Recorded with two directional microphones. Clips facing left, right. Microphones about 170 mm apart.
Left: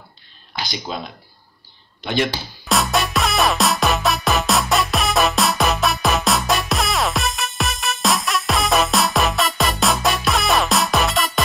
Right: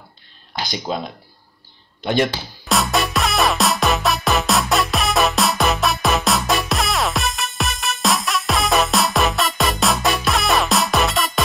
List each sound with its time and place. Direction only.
0.7 s speech: 45° right (ahead or behind)
2.6 s music: centre (ahead or behind)